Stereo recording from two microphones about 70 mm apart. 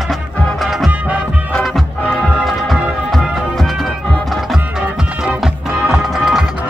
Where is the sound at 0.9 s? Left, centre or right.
Right.